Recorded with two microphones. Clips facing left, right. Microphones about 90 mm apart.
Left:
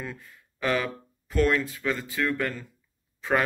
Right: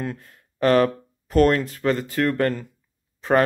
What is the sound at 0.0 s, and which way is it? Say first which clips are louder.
Speech: right 7 dB; 55° right (ahead or behind).